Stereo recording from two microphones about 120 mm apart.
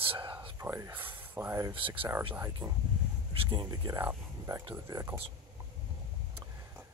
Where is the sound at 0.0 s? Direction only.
45° right (ahead or behind).